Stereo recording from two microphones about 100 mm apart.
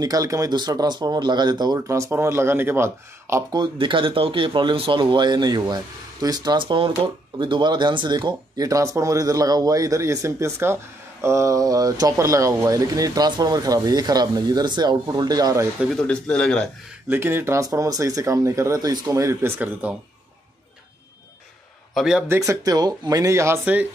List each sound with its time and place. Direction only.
0.0 s speech: 35° right (ahead or behind)
1.8 s speech: 30° right (ahead or behind)
3.5 s speech: 55° right (ahead or behind); by 15.7 s 35° right (ahead or behind)
15.9 s a man's voice: 5° left (ahead or behind)
17.1 s speech: 20° right (ahead or behind)
19.6 s speech: 15° right (ahead or behind)
21.9 s a man's voice: 5° right (ahead or behind)
22.3 s speech: 30° right (ahead or behind)
23.6 s speech: 15° right (ahead or behind)